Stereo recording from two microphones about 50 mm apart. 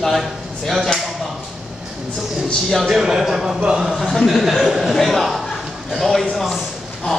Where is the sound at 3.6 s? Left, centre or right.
Centre.